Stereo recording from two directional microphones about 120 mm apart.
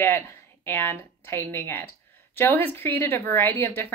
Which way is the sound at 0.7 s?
20° left (ahead or behind).